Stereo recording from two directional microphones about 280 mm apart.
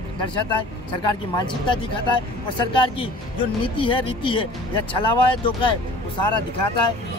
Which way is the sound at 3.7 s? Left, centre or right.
Centre.